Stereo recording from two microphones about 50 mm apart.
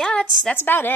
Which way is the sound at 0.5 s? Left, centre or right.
Left.